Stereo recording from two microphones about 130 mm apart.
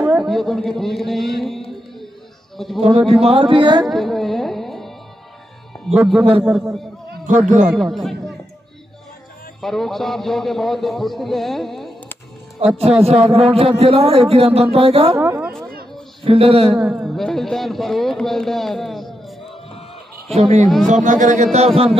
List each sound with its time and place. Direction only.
0.2 s a sound: centre (ahead or behind)
2.9 s speech: 5° left (ahead or behind)
3.2 s speech: 45° right (ahead or behind)
3.8 s music: centre (ahead or behind)
5.9 s speech: centre (ahead or behind)
7.2 s speech: 75° right (ahead or behind)
7.7 s speech: centre (ahead or behind)
9.6 s speech: centre (ahead or behind)
12.5 s a man's voice: 50° right (ahead or behind)
15.1 s a woman's voice: 15° right (ahead or behind)
16.3 s a man's voice: 50° right (ahead or behind)
16.7 s speech: 5° right (ahead or behind)
20.3 s speech: 60° right (ahead or behind)